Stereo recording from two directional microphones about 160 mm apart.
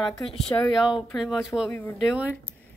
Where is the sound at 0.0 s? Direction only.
Centre (ahead or behind).